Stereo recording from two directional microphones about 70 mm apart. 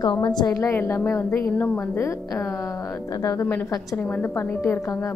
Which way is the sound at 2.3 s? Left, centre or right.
Left.